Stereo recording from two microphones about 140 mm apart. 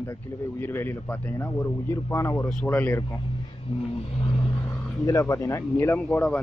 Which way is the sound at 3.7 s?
50° left (ahead or behind).